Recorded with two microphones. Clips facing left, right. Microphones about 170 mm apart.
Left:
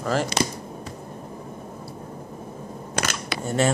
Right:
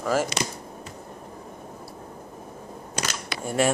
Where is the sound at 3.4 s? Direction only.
10° right (ahead or behind).